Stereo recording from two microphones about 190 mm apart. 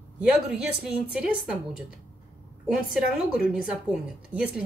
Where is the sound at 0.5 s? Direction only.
5° right (ahead or behind).